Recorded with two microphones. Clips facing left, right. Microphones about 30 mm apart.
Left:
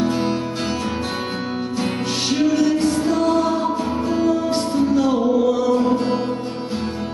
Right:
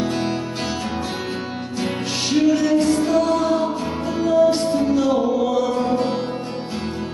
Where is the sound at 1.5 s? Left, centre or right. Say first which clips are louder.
Left 2 dB; centre.